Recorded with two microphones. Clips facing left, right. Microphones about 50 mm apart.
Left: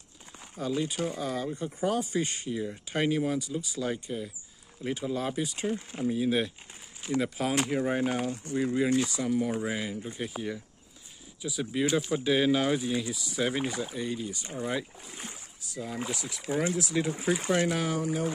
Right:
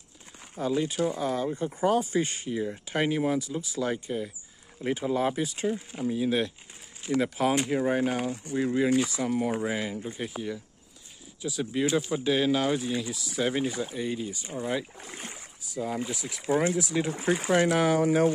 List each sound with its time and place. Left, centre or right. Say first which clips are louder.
0.6 s speech: right 3 dB; centre
5.4 s speech: right 2 dB; centre
11.4 s speech: right 1 dB; centre
15.1 s speech: right 1 dB; right
15.7 s speech: right 3 dB; centre
16.3 s speech: right 5 dB; centre
16.7 s speech: right 1 dB; centre
17.7 s speech: right 7 dB; right